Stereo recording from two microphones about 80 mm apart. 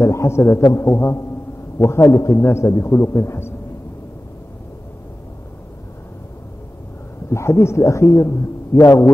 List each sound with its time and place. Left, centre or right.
0.0 s a man's voice: left
7.2 s a man's voice: left